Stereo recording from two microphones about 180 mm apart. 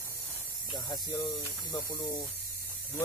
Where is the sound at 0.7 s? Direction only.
20° left (ahead or behind).